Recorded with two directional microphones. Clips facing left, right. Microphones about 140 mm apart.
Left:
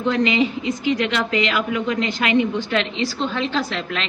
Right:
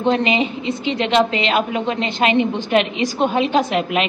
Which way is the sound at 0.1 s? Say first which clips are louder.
Left 1 dB; 20° right (ahead or behind).